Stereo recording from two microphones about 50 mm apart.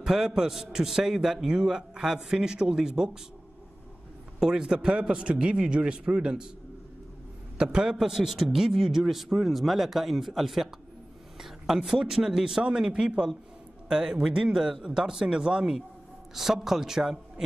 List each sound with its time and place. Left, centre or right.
0.0 s a man's voice: centre
4.4 s a man's voice: centre
7.5 s a man's voice: centre